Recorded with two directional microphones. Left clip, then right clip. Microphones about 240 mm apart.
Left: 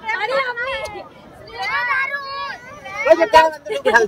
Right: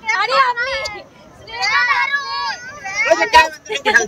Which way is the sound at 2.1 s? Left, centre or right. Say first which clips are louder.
Right 5 dB; left.